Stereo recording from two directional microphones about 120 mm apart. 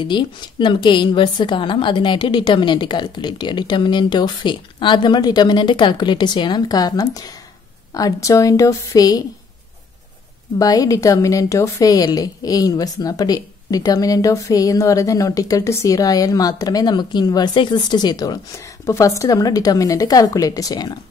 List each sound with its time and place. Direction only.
0.0 s a woman's voice: 40° left (ahead or behind)
10.6 s a woman's voice: 30° left (ahead or behind)